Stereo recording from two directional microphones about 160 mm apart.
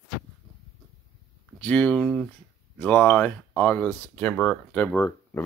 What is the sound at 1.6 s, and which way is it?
Speech, 10° left (ahead or behind).